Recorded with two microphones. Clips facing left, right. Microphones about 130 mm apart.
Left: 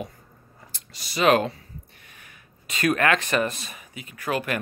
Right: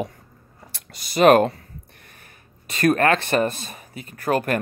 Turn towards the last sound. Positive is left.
turn(degrees=-45)  # may be behind; listen again after turning